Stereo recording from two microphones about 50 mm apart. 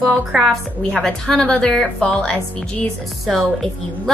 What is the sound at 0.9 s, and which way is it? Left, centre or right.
Speech, centre.